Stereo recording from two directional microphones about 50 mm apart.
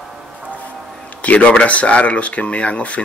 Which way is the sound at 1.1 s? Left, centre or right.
Left.